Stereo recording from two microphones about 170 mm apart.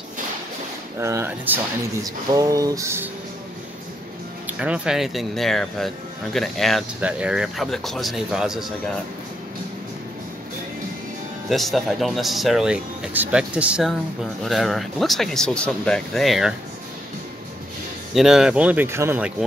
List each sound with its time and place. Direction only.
0.9 s speech: 15° right (ahead or behind)
4.5 s speech: 5° right (ahead or behind)
11.4 s speech: centre (ahead or behind)
18.1 s speech: 5° right (ahead or behind)